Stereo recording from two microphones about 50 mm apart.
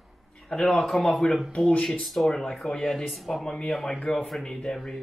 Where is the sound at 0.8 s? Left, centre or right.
Centre.